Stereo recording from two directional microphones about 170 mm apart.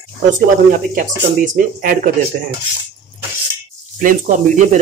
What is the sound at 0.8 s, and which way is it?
Speech, 50° right (ahead or behind).